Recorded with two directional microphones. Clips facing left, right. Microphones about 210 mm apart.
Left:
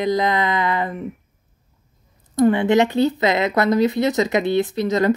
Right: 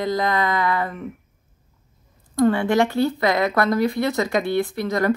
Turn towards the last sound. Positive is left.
turn(degrees=20)  # may be behind; listen again after turning